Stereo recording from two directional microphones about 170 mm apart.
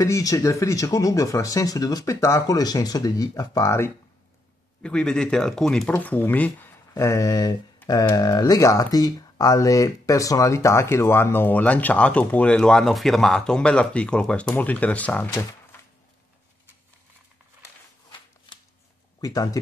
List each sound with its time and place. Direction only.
0.0 s speech: 20° left (ahead or behind)
4.8 s speech: 5° left (ahead or behind)
19.2 s speech: 20° left (ahead or behind)